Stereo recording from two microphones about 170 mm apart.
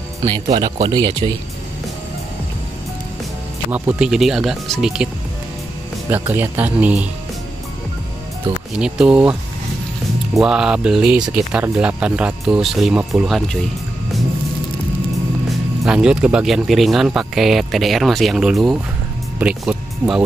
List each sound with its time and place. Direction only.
0.6 s speech: 25° right (ahead or behind)
3.7 s speech: 5° right (ahead or behind)
8.7 s speech: 5° right (ahead or behind)
15.8 s speech: 5° right (ahead or behind)